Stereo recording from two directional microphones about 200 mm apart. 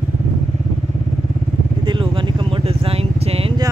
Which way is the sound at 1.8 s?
25° right (ahead or behind).